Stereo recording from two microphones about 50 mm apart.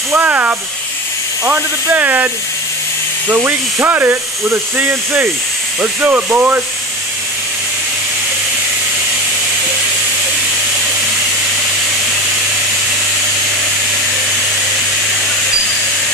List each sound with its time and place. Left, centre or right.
0.1 s speech: right
1.4 s speech: right